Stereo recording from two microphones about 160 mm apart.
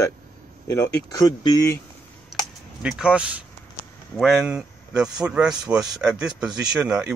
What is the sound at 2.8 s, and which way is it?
Speech, 5° right (ahead or behind).